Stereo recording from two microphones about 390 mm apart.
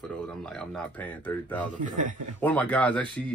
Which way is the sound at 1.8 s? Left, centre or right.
Centre.